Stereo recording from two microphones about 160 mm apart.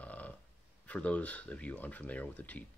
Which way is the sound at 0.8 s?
10° left (ahead or behind).